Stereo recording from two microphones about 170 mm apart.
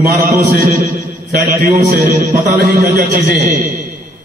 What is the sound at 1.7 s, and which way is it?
Speech, 45° right (ahead or behind).